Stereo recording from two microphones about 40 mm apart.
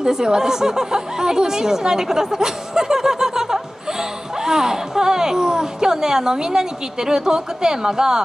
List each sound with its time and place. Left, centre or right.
0.0 s a woman's voice: centre